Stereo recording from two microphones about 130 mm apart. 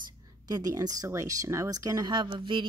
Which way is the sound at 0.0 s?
30° right (ahead or behind).